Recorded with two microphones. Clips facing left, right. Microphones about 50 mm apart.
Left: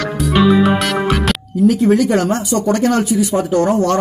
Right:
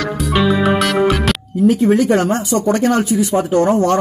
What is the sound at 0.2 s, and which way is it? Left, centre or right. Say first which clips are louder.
Music: left 3 dB; centre.